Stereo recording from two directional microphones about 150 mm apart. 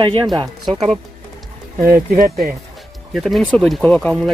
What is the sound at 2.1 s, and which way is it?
Speech, 75° right (ahead or behind).